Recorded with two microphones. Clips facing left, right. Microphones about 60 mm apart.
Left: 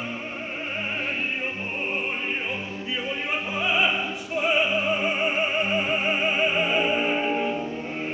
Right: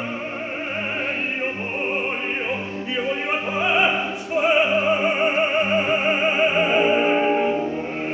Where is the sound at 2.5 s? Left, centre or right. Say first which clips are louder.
Right 4 dB; centre.